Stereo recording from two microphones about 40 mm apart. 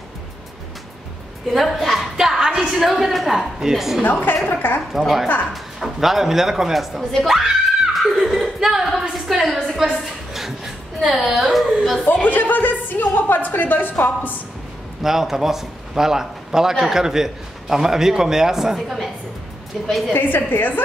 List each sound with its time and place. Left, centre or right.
1.5 s a woman's voice: centre
2.1 s a woman's voice: centre
4.0 s a woman's voice: left
4.9 s a woman's voice: centre
7.9 s chuckle: centre
9.1 s a woman's voice: centre
10.3 s a sound: centre
11.1 s a woman's voice: centre
12.1 s a woman's voice: left
15.0 s a man's voice: centre
20.2 s a woman's voice: left